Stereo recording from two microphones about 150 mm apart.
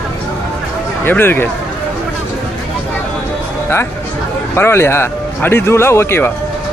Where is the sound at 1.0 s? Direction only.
15° left (ahead or behind).